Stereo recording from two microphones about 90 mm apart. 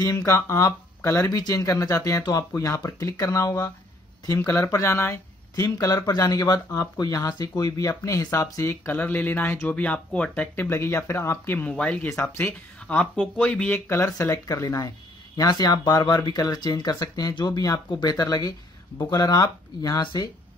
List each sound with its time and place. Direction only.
0.0 s speech: 35° left (ahead or behind)
11.7 s speech: 15° left (ahead or behind)
12.1 s speech: 25° left (ahead or behind)
12.8 s speech: 10° left (ahead or behind)
13.7 s speech: 30° left (ahead or behind)
20.0 s speech: 60° left (ahead or behind)